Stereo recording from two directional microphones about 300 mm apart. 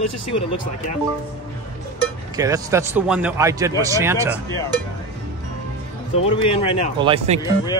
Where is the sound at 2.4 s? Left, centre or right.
Centre.